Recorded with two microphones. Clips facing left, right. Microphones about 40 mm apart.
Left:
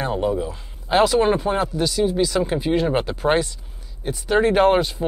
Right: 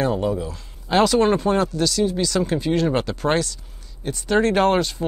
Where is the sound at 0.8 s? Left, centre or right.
Centre.